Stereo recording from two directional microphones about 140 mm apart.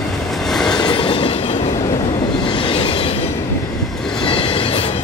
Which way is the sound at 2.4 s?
35° left (ahead or behind).